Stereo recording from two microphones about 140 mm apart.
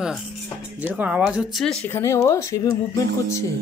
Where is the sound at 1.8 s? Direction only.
20° left (ahead or behind).